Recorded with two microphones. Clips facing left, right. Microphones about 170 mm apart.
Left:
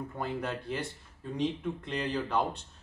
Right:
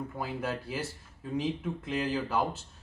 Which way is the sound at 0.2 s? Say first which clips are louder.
Left 1 dB; 5° right (ahead or behind).